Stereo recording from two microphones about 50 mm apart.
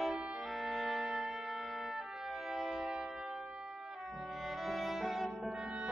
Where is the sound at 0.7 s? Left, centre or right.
Centre.